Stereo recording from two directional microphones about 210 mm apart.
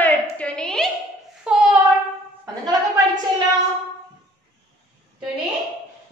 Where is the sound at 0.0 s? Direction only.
5° left (ahead or behind).